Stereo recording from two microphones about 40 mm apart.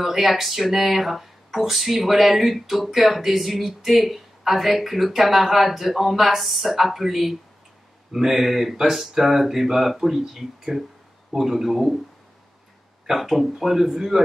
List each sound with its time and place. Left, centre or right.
0.0 s speech: centre
13.1 s speech: centre